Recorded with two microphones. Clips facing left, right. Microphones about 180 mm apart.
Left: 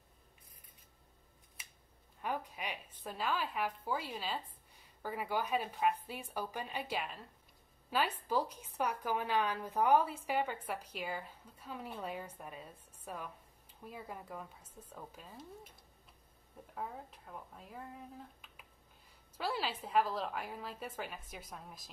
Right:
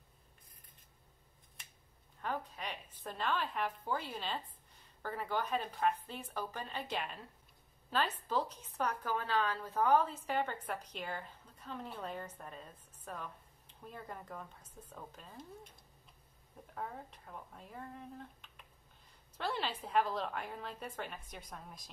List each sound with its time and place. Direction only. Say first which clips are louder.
2.2 s a sound: left 1 dB; 10° left (ahead or behind)
3.0 s a woman's voice: even; 5° left (ahead or behind)
16.7 s a woman's voice: even; 5° left (ahead or behind)